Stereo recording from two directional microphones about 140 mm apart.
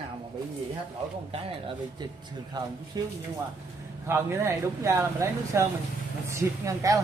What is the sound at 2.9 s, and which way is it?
Speech, 25° right (ahead or behind).